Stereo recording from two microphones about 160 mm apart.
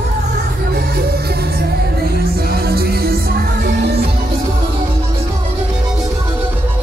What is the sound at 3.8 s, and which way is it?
Music, 90° right.